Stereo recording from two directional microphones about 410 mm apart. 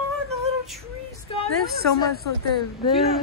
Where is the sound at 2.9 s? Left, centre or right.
Centre.